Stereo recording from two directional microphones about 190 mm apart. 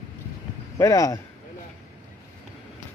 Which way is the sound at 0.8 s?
15° left (ahead or behind).